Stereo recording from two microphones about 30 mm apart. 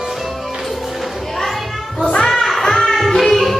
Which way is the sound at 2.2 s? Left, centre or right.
Centre.